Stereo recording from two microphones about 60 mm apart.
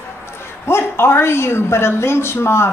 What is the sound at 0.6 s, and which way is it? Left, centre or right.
A woman's voice, left.